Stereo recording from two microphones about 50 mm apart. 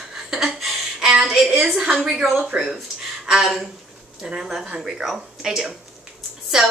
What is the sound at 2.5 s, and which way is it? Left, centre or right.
Speech, right.